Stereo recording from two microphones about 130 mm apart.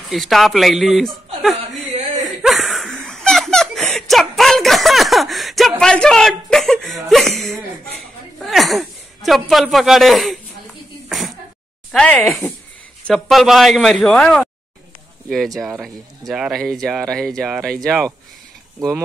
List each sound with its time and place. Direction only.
0.1 s speech: centre (ahead or behind)
2.0 s chuckle: 65° right (ahead or behind)
2.4 s chuckle: centre (ahead or behind)
7.1 s a sound: centre (ahead or behind)
11.1 s sneeze: centre (ahead or behind)
11.9 s speech: 5° left (ahead or behind)
18.8 s speech: 25° right (ahead or behind)